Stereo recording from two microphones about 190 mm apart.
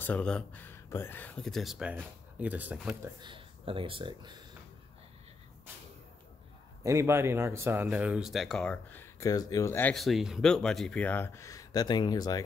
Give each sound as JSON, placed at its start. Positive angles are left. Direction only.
{"t": 0.0, "sound": "speech", "side_deg": 5}
{"t": 3.0, "sound": "speech", "side_deg": -25}
{"t": 6.8, "sound": "speech", "side_deg": -15}